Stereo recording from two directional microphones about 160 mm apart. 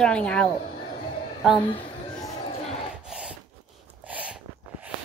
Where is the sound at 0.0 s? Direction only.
5° left (ahead or behind).